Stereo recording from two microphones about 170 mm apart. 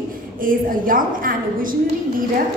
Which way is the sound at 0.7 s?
55° right (ahead or behind).